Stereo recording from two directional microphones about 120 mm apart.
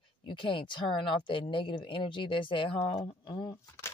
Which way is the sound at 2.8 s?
55° left (ahead or behind).